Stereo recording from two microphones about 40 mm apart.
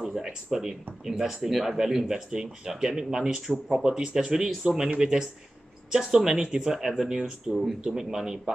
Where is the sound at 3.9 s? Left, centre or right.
Centre.